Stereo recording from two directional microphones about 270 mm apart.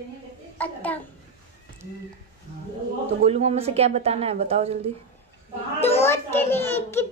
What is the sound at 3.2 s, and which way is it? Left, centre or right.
A woman's voice, right.